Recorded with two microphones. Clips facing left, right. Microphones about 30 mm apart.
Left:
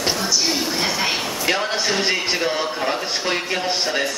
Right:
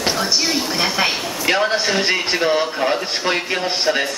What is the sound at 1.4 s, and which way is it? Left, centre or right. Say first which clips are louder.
A man's voice: right 5 dB; centre.